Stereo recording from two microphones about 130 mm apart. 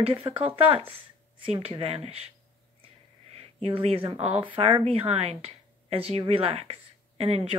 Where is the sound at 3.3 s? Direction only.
50° right (ahead or behind).